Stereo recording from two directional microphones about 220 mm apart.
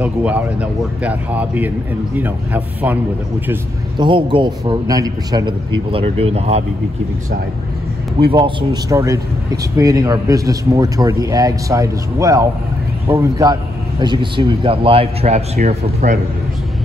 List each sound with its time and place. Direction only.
0.0 s a man's voice: 5° right (ahead or behind)
4.0 s a man's voice: 20° right (ahead or behind)
8.2 s a man's voice: 25° right (ahead or behind)